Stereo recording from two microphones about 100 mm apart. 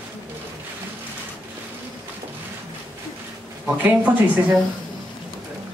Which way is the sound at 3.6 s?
15° right (ahead or behind).